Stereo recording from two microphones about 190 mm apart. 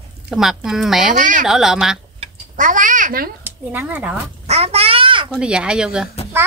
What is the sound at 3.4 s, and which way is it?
Speech, 10° right (ahead or behind).